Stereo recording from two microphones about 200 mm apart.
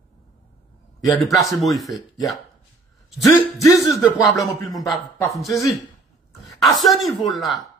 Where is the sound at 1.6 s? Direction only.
Centre (ahead or behind).